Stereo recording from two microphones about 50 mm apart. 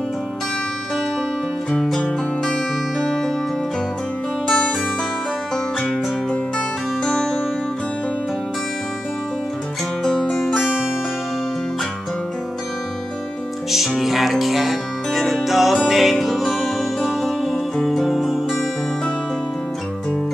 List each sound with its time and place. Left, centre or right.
2.0 s music: centre
4.5 s music: centre
7.1 s music: centre
10.0 s music: centre
13.7 s music: centre